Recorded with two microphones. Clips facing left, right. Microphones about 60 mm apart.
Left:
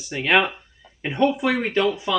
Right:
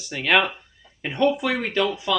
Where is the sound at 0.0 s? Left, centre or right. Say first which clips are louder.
Left 1 dB; centre.